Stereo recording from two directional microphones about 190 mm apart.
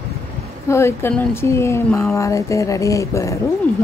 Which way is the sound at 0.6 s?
15° left (ahead or behind).